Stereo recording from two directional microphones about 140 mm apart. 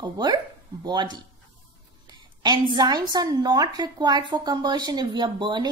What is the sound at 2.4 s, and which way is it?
A woman's voice, 30° right (ahead or behind).